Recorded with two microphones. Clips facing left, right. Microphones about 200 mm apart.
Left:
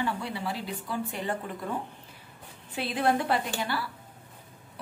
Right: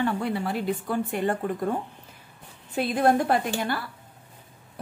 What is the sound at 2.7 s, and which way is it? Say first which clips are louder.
A woman's voice: right 5 dB; 50° right (ahead or behind).